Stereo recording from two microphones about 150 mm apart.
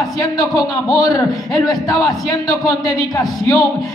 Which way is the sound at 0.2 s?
25° left (ahead or behind).